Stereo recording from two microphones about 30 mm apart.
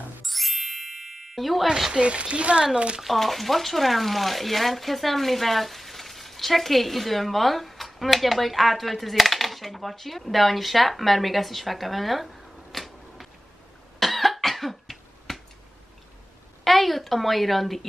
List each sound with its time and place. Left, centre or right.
0.2 s music: centre
2.0 s a woman's voice: right
3.1 s speech: centre
12.7 s a sound: centre
13.9 s cough: centre
16.6 s a sound: centre